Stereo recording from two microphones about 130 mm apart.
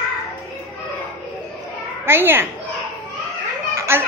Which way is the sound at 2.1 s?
15° right (ahead or behind).